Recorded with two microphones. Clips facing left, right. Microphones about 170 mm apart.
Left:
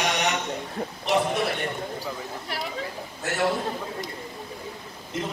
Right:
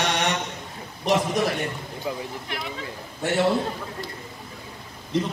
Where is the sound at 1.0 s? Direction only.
40° right (ahead or behind).